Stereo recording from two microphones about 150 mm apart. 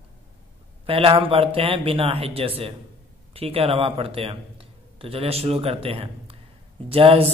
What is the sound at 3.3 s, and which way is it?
A man's voice, 40° right (ahead or behind).